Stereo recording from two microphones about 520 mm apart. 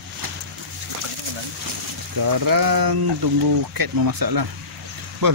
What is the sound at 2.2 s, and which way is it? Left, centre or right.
Speech, right.